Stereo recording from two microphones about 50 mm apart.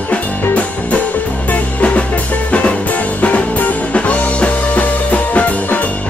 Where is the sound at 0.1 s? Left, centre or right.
Left.